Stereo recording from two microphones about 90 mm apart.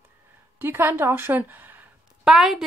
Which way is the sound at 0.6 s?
25° right (ahead or behind).